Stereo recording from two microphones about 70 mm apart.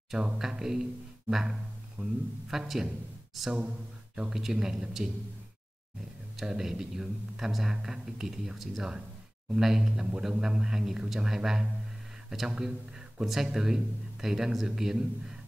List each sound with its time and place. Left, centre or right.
0.1 s speech: centre
6.3 s speech: centre